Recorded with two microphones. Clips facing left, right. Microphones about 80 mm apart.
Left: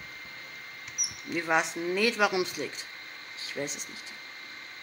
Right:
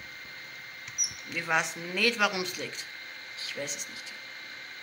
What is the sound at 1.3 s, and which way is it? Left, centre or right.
Speech, left.